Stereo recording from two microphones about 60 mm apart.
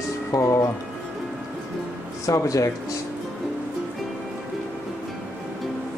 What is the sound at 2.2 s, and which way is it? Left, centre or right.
Speech, left.